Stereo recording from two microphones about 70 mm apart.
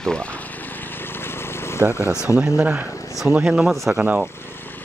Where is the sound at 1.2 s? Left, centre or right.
Left.